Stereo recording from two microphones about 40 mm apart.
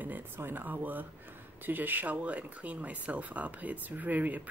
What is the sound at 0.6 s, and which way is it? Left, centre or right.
Speech, right.